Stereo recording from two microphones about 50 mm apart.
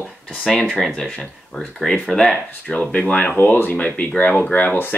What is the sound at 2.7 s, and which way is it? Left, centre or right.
Speech, left.